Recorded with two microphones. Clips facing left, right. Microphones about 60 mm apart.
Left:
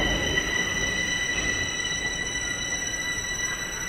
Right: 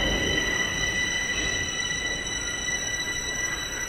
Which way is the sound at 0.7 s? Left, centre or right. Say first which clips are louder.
Even; left.